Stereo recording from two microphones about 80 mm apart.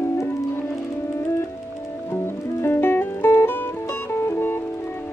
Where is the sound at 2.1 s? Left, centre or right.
Left.